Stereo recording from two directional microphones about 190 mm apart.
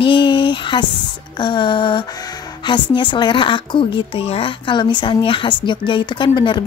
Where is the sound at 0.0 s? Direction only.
25° left (ahead or behind).